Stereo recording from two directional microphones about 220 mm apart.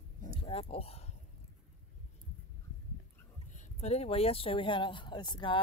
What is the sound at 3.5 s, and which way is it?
Speech, 30° left (ahead or behind).